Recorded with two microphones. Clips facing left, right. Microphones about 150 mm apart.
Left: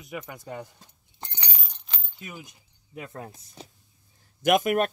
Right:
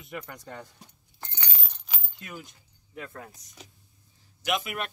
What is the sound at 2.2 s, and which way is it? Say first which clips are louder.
Speech: left 1 dB; 5° left (ahead or behind).